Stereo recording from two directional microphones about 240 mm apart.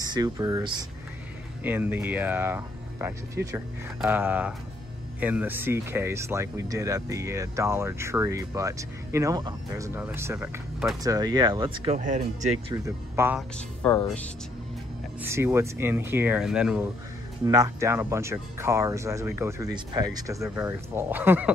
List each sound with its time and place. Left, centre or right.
0.0 s speech: centre
12.7 s speech: centre
13.8 s speech: centre
15.2 s speech: centre
17.5 s speech: centre